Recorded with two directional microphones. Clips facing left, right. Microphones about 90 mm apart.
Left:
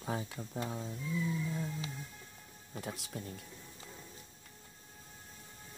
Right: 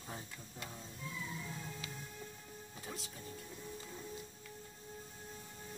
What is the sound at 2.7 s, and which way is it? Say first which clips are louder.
Speech: left 7 dB; 60° left (ahead or behind).